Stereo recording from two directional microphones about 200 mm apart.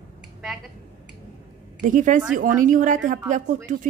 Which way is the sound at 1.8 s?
40° right (ahead or behind).